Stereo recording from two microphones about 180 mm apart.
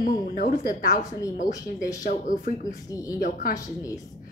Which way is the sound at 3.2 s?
50° left (ahead or behind).